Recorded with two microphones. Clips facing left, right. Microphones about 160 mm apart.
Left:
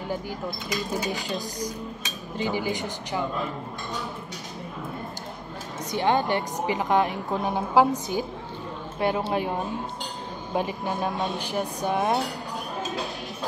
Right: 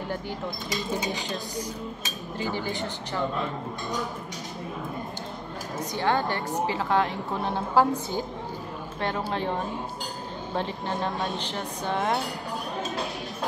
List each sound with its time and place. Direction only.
2.5 s speech: 15° left (ahead or behind)
5.9 s speech: 20° left (ahead or behind)
9.3 s speech: 10° left (ahead or behind)